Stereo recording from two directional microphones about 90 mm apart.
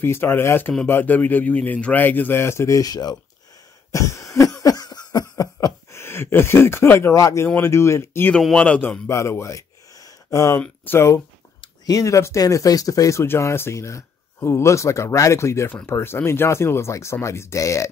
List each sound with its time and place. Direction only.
0.0 s a man's voice: 25° left (ahead or behind); by 3.2 s 45° left (ahead or behind)
3.9 s cough: 35° left (ahead or behind)
5.9 s a man's voice: 25° left (ahead or behind)
8.5 s a man's voice: 15° left (ahead or behind)
9.0 s a sound: 30° left (ahead or behind)
10.9 s a man's voice: 30° left (ahead or behind)
11.8 s a man's voice: 40° left (ahead or behind)